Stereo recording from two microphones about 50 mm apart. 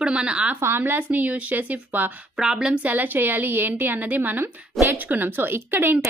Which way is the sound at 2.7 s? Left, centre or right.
Right.